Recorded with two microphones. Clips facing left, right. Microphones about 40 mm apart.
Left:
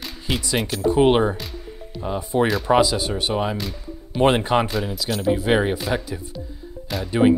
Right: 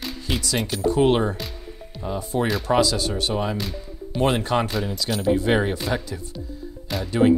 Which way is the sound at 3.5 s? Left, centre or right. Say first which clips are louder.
Even; centre.